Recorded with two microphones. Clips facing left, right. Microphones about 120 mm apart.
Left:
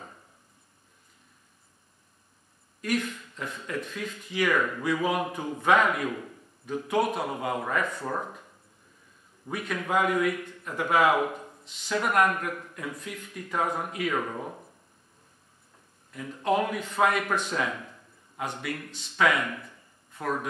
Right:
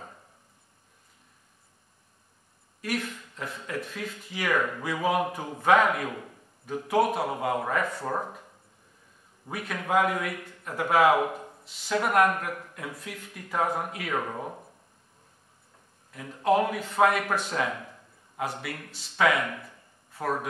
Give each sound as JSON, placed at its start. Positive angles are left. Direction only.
{"t": 2.8, "sound": "speech", "side_deg": -5}
{"t": 4.6, "sound": "speech", "side_deg": -15}
{"t": 5.6, "sound": "speech", "side_deg": -5}
{"t": 9.5, "sound": "speech", "side_deg": -5}
{"t": 14.1, "sound": "speech", "side_deg": -20}
{"t": 16.1, "sound": "a man's voice", "side_deg": -5}
{"t": 19.6, "sound": "a sound", "side_deg": -5}